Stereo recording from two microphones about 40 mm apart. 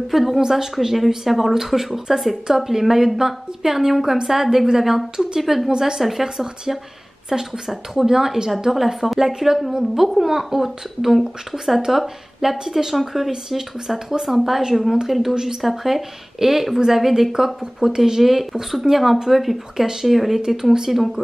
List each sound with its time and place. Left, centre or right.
0.1 s a woman's voice: centre
0.7 s speech: centre
5.4 s a woman's voice: centre
5.7 s a woman's voice: centre
5.9 s a woman's voice: centre
20.4 s speech: centre